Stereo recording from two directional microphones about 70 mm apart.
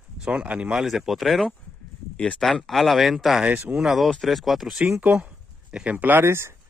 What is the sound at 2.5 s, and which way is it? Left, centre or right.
Speech, centre.